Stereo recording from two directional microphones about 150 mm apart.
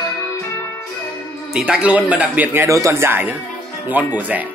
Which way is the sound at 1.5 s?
5° right (ahead or behind).